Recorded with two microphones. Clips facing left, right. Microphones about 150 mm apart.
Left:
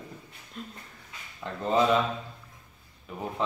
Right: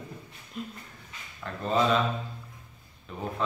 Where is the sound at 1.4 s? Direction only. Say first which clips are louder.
Left 2 dB; 20° left (ahead or behind).